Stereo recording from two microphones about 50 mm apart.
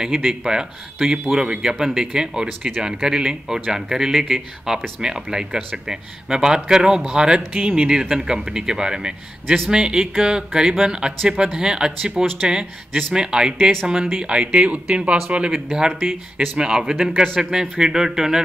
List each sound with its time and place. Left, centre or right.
0.0 s speech: centre; by 15.5 s right
15.5 s speech: centre
15.9 s speech: centre
16.5 s speech: centre